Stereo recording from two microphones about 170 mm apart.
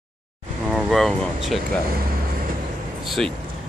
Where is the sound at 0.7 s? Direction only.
Centre (ahead or behind).